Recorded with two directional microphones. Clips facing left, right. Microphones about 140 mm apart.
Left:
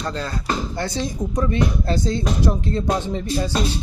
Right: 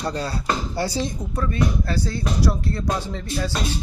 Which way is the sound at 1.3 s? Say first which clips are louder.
Left 2 dB; 20° left (ahead or behind).